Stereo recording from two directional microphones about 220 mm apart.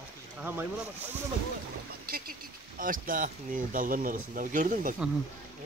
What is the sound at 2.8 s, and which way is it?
Speech, 40° right (ahead or behind).